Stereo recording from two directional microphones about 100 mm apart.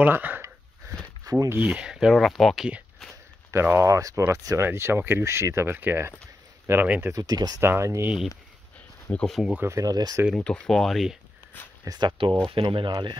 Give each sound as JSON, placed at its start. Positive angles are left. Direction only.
{"t": 0.0, "sound": "a sound", "side_deg": -20}
{"t": 1.3, "sound": "a sound", "side_deg": -40}
{"t": 1.6, "sound": "speech", "side_deg": -10}
{"t": 3.5, "sound": "speech", "side_deg": -25}
{"t": 7.2, "sound": "speech", "side_deg": -40}
{"t": 7.6, "sound": "speech", "side_deg": -25}
{"t": 9.1, "sound": "speech", "side_deg": 5}
{"t": 9.5, "sound": "speech", "side_deg": -20}
{"t": 9.8, "sound": "speech", "side_deg": -40}
{"t": 10.3, "sound": "speech", "side_deg": 10}
{"t": 11.8, "sound": "speech", "side_deg": -40}
{"t": 12.1, "sound": "speech", "side_deg": -60}